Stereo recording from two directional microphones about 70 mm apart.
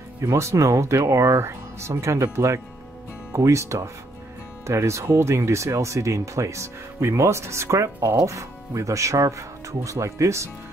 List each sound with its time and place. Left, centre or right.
0.2 s speech: right